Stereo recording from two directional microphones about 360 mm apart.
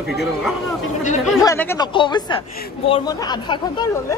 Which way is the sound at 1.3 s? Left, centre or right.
Centre.